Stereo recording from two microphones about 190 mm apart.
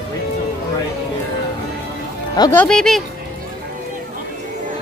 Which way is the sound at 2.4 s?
10° left (ahead or behind).